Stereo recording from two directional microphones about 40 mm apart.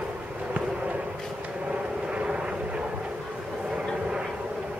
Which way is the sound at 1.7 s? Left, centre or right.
Right.